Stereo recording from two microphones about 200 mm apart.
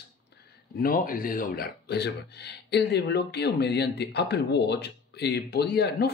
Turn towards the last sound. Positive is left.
turn(degrees=55)  # may be behind; listen again after turning